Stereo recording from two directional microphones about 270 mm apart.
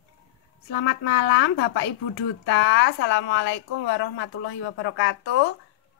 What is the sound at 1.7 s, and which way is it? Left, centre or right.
A woman's voice, left.